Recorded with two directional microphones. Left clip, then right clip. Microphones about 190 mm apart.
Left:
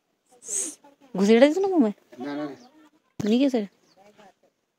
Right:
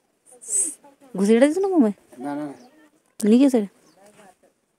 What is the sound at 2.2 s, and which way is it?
Speech, 60° right (ahead or behind).